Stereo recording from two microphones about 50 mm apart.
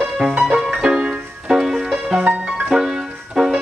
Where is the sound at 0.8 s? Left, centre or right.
Centre.